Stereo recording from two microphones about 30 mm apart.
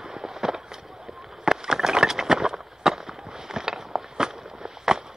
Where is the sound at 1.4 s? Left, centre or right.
Right.